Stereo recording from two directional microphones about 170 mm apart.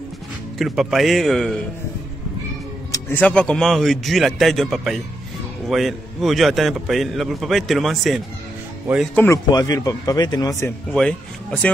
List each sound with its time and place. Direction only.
0.6 s a man's voice: centre (ahead or behind)
2.9 s a man's voice: 10° left (ahead or behind)
9.0 s speech: 10° left (ahead or behind)
9.5 s speech: 20° left (ahead or behind)
10.9 s a man's voice: 5° left (ahead or behind)